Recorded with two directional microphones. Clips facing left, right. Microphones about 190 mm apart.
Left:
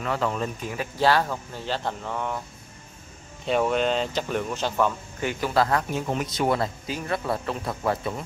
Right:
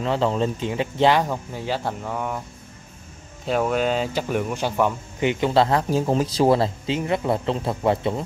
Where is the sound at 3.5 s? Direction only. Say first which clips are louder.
Right 1 dB; centre (ahead or behind); by 8.2 s 25° right (ahead or behind).